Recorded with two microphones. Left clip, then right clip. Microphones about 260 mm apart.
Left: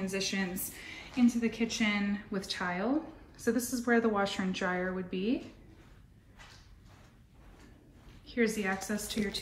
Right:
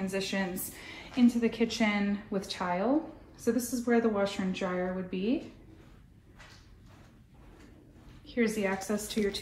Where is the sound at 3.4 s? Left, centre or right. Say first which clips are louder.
Right 1 dB; left.